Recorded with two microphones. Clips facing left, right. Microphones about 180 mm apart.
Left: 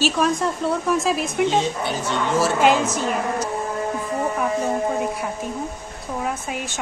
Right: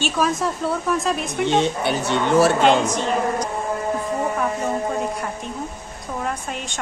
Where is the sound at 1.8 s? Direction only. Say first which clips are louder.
Right 3 dB; 65° right (ahead or behind).